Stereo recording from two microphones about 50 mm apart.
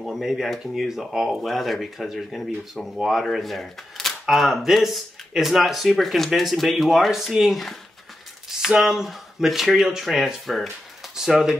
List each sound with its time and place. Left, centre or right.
0.0 s speech: centre